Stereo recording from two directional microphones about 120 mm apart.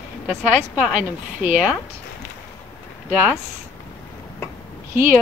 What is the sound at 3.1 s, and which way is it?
Speech, 15° right (ahead or behind).